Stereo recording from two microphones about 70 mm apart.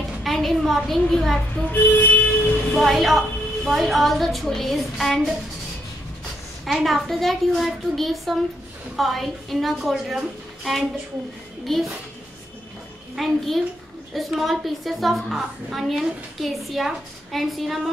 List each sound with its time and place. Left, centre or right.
0.2 s a sound: centre
0.8 s a woman's voice: centre
1.7 s a sound: left
2.7 s a woman's voice: centre
6.6 s a woman's voice: centre
13.1 s a woman's voice: centre